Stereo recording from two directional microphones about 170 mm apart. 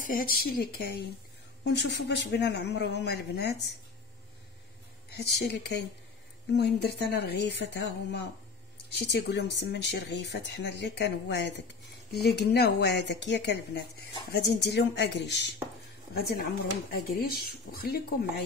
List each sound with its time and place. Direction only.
0.0 s speech: 55° left (ahead or behind)
1.6 s speech: 90° left; by 3.7 s 75° left (ahead or behind)
5.1 s speech: 75° left (ahead or behind)
6.5 s speech: 75° left (ahead or behind); by 15.5 s 90° left
16.2 s speech: 65° left (ahead or behind)